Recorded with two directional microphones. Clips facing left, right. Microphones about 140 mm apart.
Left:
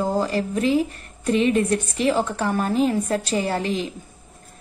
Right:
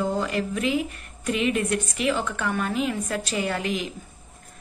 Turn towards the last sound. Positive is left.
turn(degrees=30)  # may be behind; listen again after turning